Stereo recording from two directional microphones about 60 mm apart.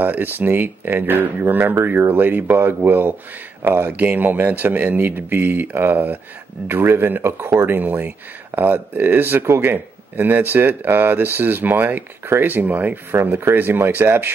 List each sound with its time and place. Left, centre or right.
0.0 s speech: right